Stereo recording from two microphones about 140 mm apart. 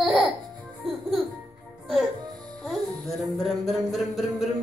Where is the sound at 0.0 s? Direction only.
Centre (ahead or behind).